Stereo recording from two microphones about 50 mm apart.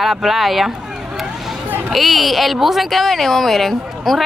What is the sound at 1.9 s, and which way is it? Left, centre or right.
Speech, centre.